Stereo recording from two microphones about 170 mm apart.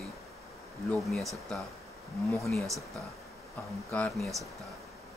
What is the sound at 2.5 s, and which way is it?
Speech, centre (ahead or behind).